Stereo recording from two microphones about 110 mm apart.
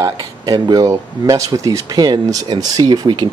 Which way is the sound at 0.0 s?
35° right (ahead or behind).